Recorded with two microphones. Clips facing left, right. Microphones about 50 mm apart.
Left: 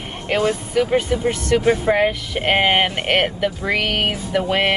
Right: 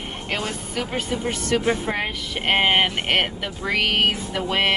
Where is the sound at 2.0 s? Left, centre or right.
Centre.